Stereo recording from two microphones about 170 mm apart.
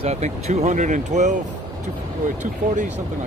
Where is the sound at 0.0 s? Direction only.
40° right (ahead or behind).